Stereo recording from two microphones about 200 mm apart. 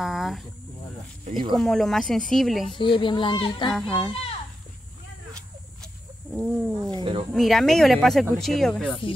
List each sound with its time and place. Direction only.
0.0 s speech: centre (ahead or behind)
1.6 s speech: centre (ahead or behind)
2.8 s speech: 25° left (ahead or behind)
3.7 s speech: 5° left (ahead or behind)
4.1 s a sound: 30° left (ahead or behind)
6.3 s speech: centre (ahead or behind)
6.9 s speech: 25° right (ahead or behind)
7.3 s speech: centre (ahead or behind)